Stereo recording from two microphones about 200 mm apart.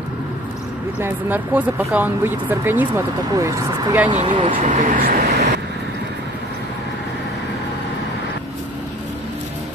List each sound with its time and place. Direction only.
0.9 s speech: 10° right (ahead or behind)
4.1 s speech: 30° right (ahead or behind)
4.6 s speech: 40° right (ahead or behind)